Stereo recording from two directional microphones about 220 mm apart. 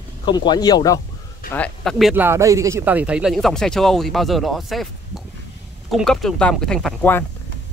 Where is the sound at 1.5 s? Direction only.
5° left (ahead or behind).